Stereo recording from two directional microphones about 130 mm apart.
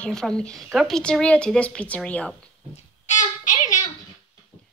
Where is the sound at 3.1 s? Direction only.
75° left (ahead or behind).